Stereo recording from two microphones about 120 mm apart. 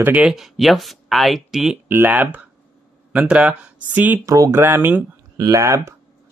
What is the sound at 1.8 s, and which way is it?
Speech, 15° right (ahead or behind).